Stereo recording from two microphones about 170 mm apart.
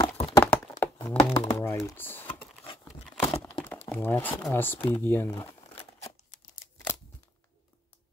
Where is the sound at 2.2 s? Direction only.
30° left (ahead or behind).